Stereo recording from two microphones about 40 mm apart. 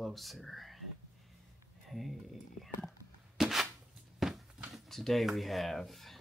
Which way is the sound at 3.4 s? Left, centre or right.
Centre.